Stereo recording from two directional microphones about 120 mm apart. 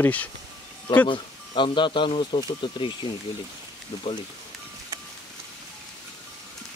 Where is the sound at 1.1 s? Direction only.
45° left (ahead or behind).